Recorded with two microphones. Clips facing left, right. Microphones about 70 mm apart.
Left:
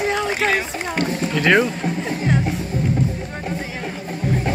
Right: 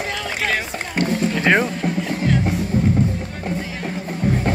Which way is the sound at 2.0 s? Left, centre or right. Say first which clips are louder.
Left 1 dB; left.